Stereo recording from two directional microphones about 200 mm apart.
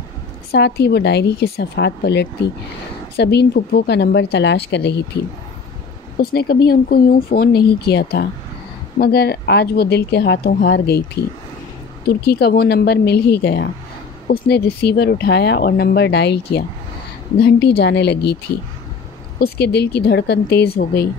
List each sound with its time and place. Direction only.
0.5 s speech: 55° left (ahead or behind)
6.3 s speech: 50° left (ahead or behind)
12.1 s speech: 55° left (ahead or behind)
19.4 s speech: 55° left (ahead or behind)